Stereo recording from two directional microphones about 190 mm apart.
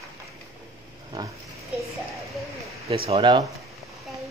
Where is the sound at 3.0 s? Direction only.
25° right (ahead or behind).